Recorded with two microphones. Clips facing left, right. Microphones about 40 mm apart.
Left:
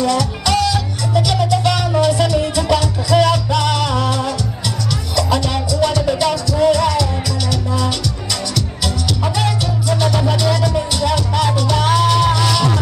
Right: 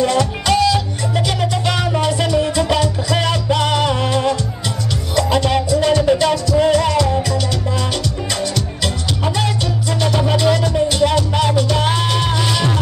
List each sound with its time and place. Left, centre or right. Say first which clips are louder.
0.0 s music: right 1 dB; right
9.8 s music: left 1 dB; right